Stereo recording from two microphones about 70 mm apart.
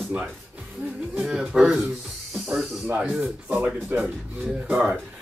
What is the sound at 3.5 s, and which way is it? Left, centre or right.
Speech, right.